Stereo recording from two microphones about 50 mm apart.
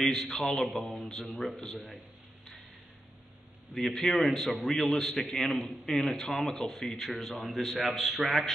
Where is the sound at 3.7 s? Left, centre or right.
Centre.